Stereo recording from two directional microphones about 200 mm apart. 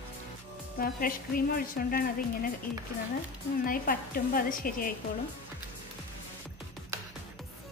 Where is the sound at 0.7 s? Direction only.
45° left (ahead or behind).